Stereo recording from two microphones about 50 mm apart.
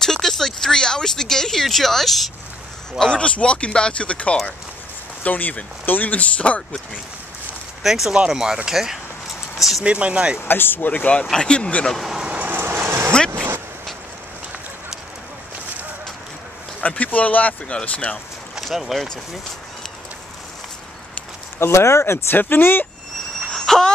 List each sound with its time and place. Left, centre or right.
0.0 s speech: centre
3.2 s speech: left
7.8 s speech: centre
9.8 s speech: right
10.4 s speech: left
10.9 s speech: left
12.1 s vehicle: centre
12.4 s vehicle: right
16.8 s speech: left
18.1 s speech: centre
21.5 s speech: left
22.4 s speech: left
23.5 s a sound: centre